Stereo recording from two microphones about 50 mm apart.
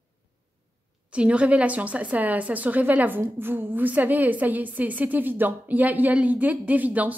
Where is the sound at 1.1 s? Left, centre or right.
Right.